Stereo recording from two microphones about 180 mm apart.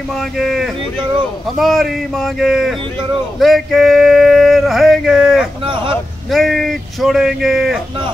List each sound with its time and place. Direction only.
0.1 s male singing: centre (ahead or behind)
5.6 s vehicle: 30° right (ahead or behind)
6.3 s male singing: centre (ahead or behind)